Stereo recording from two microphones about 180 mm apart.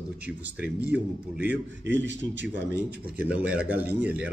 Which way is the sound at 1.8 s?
80° right.